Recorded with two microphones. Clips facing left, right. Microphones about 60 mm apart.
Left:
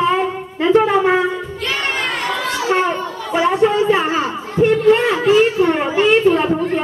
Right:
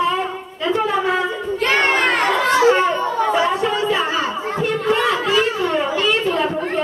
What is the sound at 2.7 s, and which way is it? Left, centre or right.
Children playing, left.